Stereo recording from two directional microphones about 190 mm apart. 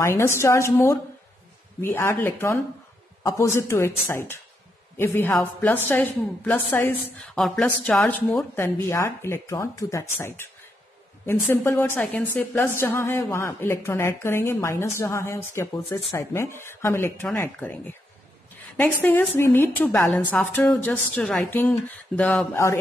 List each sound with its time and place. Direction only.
0.0 s a woman's voice: 15° left (ahead or behind)